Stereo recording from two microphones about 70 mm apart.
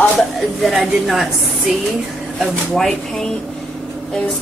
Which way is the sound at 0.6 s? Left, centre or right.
Centre.